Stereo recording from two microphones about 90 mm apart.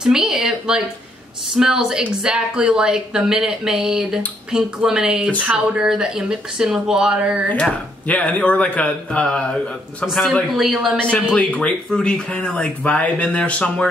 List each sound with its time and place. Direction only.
0.0 s a woman's voice: 5° right (ahead or behind)
7.5 s speech: 15° left (ahead or behind)
10.0 s speech: centre (ahead or behind)
11.0 s speech: 10° left (ahead or behind)